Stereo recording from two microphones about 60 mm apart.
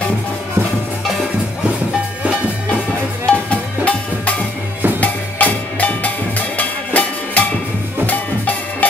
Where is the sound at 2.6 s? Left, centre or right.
Centre.